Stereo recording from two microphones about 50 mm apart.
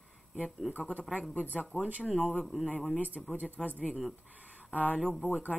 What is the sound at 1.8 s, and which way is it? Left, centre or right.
Speech, right.